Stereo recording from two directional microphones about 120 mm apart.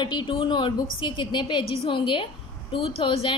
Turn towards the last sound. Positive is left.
turn(degrees=50)  # may be behind; listen again after turning